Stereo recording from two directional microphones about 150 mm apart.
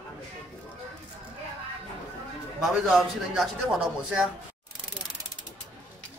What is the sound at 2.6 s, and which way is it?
A man's voice, centre (ahead or behind).